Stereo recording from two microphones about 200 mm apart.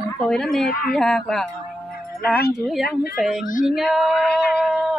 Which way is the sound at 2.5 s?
Centre (ahead or behind).